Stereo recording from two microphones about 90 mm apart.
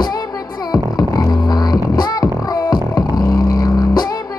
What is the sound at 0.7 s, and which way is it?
Music, 45° left (ahead or behind).